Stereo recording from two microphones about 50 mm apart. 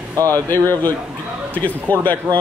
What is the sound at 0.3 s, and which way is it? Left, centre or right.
Speech, left.